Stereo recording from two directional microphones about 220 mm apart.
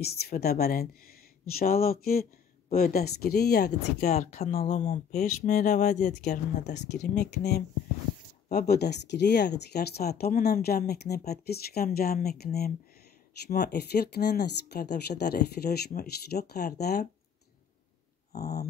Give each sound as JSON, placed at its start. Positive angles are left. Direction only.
{"t": 0.0, "sound": "speech", "side_deg": 45}
{"t": 4.1, "sound": "speech", "side_deg": 30}
{"t": 7.2, "sound": "speech", "side_deg": 50}
{"t": 13.5, "sound": "speech", "side_deg": 50}
{"t": 18.3, "sound": "dog", "side_deg": 45}